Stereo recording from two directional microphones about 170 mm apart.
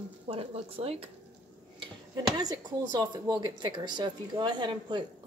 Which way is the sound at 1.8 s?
25° right (ahead or behind).